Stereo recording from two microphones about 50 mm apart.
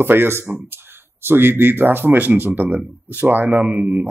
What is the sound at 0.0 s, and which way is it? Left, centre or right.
A man's voice, right.